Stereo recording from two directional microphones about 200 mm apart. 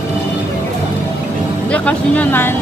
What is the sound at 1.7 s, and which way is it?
Speech, 5° left (ahead or behind).